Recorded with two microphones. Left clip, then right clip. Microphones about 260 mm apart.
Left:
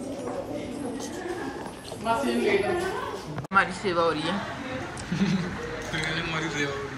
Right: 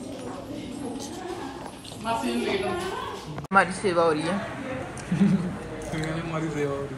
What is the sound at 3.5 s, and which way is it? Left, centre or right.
Speech, centre.